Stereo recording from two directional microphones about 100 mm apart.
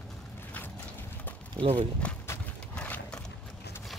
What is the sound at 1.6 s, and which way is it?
Speech, 70° right (ahead or behind).